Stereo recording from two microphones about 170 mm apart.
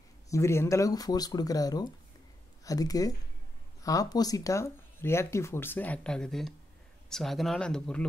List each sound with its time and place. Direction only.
0.3 s speech: 15° left (ahead or behind)